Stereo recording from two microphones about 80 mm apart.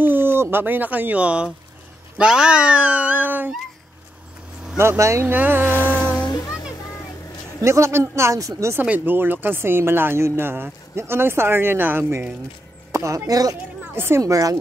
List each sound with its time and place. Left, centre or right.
0.0 s speech: right
4.7 s speech: right
5.3 s speech: right
5.7 s music: left
6.3 s music: left
7.6 s speech: right
8.8 s speech: right
12.9 s a sound: right
13.3 s speech: right
13.9 s speech: right
14.2 s speech: right